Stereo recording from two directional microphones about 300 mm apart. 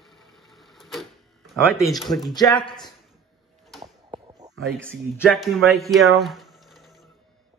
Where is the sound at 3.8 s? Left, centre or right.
Centre.